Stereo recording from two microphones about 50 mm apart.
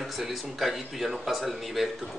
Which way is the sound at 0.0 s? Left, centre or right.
Centre.